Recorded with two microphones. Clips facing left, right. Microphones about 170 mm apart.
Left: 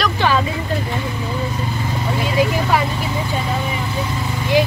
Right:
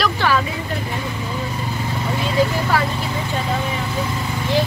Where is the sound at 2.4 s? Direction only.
15° left (ahead or behind).